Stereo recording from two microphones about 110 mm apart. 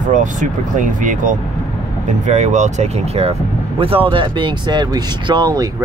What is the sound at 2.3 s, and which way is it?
Speech, 90° right.